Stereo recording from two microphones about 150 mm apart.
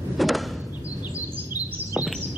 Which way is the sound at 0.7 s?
10° right (ahead or behind).